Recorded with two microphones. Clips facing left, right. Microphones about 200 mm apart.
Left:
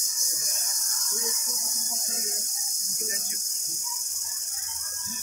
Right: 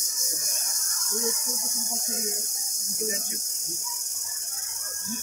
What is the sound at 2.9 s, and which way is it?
Speech, 25° right (ahead or behind).